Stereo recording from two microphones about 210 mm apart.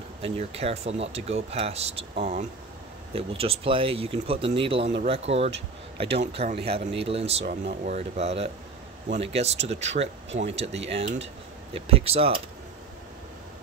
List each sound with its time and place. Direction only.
0.2 s speech: 30° right (ahead or behind)
7.4 s speech: 50° right (ahead or behind)
7.9 s speech: 30° right (ahead or behind)